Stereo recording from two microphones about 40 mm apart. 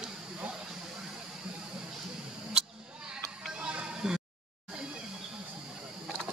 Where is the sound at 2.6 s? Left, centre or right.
Centre.